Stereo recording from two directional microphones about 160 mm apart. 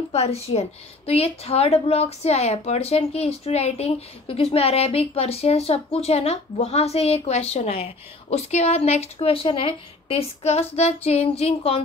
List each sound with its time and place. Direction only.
0.1 s a woman's voice: 40° left (ahead or behind)